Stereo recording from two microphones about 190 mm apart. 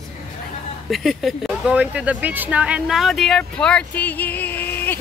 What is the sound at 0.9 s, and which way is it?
Speech, centre (ahead or behind).